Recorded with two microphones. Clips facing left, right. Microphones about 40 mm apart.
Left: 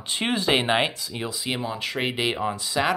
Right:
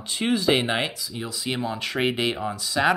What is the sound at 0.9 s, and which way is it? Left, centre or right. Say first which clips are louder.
Speech: left 1 dB; left.